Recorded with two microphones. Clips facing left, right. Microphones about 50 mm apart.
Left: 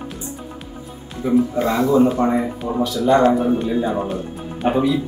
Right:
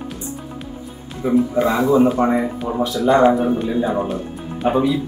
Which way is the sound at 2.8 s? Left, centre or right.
Right.